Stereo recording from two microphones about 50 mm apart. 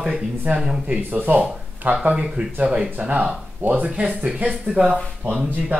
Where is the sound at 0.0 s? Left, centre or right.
Right.